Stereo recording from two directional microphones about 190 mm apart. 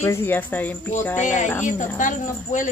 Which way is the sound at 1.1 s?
40° left (ahead or behind).